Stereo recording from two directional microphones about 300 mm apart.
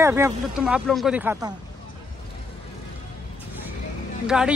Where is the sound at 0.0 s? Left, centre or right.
Centre.